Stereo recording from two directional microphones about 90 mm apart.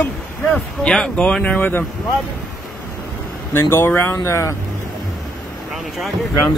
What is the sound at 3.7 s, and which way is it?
Speech, 25° left (ahead or behind).